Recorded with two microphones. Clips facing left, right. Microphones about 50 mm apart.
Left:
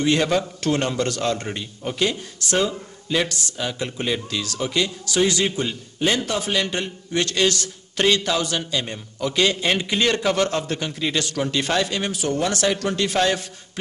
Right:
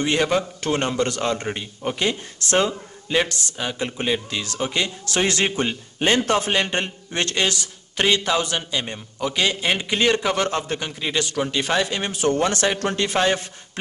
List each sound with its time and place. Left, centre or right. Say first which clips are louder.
0.0 s a man's voice: left 1 dB; centre
2.5 s speech: right 2 dB; right
3.2 s a man's voice: right 2 dB; centre
5.0 s a man's voice: left 1 dB; right
7.5 s a man's voice: even; centre
11.9 s a man's voice: right 2 dB; right